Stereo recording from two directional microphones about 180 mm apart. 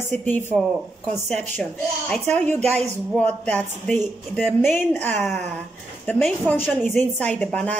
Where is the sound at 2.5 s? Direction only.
35° right (ahead or behind).